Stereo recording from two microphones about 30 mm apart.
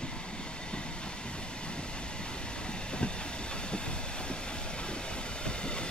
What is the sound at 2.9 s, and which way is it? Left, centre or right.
Vehicle, left.